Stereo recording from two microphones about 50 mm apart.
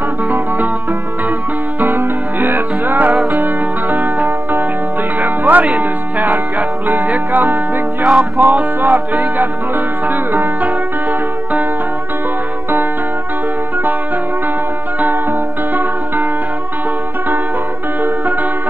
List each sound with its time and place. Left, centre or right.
1.8 s music: right
15.7 s music: right
18.0 s music: right